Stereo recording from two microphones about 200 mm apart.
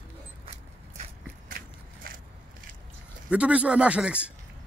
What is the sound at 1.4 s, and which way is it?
Biting, 45° right (ahead or behind).